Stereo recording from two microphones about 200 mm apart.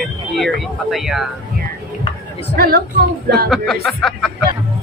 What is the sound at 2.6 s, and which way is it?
Speech, 50° right (ahead or behind).